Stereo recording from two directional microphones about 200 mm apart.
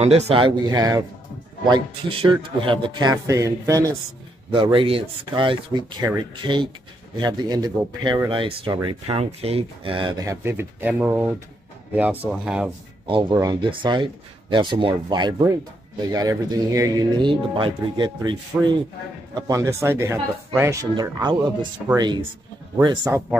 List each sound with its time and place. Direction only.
0.0 s speech: 30° right (ahead or behind); by 12.7 s 5° right (ahead or behind)
13.0 s speech: 25° right (ahead or behind)